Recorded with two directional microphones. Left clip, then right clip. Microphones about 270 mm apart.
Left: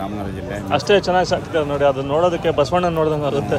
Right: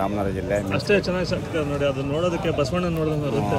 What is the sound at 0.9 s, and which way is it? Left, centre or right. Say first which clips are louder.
Speech: left 7 dB; left.